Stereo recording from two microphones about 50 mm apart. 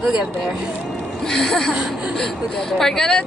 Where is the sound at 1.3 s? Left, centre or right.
Centre.